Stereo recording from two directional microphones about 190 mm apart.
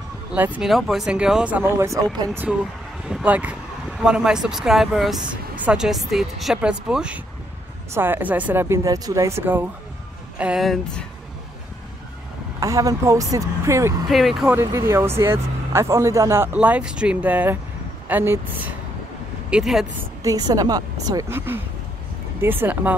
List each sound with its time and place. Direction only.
0.3 s speech: 5° right (ahead or behind)
2.4 s speech: 5° right (ahead or behind)
12.5 s speech: 15° right (ahead or behind)
14.0 s speech: centre (ahead or behind)
14.6 s speech: 15° right (ahead or behind)
20.2 s a woman's voice: 20° right (ahead or behind)